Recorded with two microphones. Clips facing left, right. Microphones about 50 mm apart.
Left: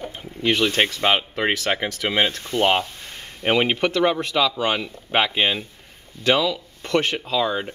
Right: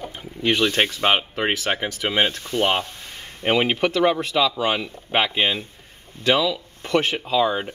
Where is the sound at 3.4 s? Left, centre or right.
Centre.